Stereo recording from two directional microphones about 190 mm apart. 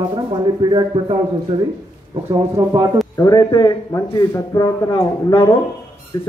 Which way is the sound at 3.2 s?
20° left (ahead or behind).